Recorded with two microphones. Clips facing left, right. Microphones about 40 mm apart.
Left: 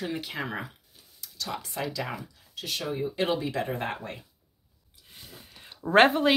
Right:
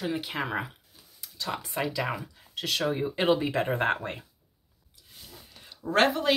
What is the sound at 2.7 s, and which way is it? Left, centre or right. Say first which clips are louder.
Speech: right 3 dB; right.